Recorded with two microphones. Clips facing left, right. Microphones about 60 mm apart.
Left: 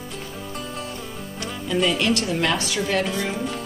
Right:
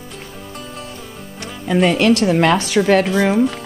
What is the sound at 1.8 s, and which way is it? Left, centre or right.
A woman's voice, right.